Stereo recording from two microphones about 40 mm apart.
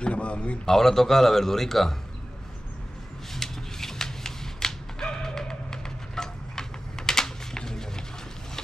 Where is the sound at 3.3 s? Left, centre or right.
Centre.